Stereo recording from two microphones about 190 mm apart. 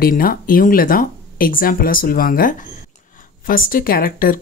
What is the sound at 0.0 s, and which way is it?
Speech, 50° left (ahead or behind).